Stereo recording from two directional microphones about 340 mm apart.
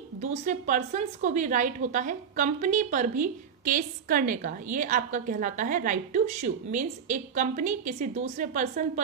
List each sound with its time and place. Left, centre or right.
0.2 s a woman's voice: right